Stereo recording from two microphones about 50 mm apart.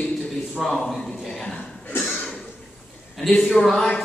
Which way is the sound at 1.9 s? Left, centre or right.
Left.